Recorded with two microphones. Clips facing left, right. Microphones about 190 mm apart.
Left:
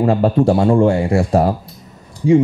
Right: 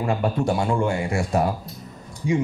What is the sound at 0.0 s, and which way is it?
Speech, 35° left (ahead or behind).